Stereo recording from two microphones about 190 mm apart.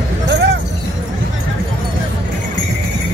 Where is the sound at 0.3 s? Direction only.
65° right (ahead or behind).